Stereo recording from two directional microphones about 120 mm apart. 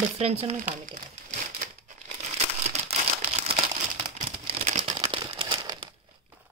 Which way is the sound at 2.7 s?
65° right (ahead or behind).